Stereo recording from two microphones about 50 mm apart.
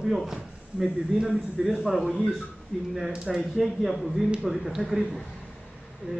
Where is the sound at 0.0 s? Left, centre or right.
Centre.